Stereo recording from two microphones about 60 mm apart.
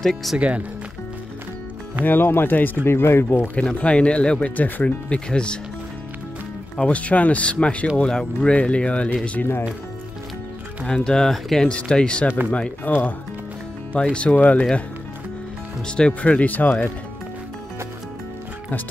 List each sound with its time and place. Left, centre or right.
0.0 s speech: centre
0.4 s speech: right
2.0 s speech: left
3.5 s speech: left
4.6 s speech: left
5.1 s speech: centre
6.9 s speech: left
11.1 s speech: centre; by 14.6 s left
16.0 s speech: left